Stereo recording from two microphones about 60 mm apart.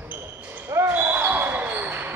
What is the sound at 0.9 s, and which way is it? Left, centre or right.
Basketball bounce, right.